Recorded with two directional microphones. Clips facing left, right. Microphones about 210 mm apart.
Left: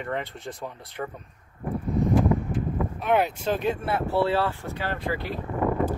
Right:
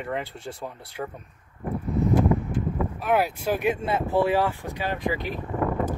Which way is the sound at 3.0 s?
5° right (ahead or behind).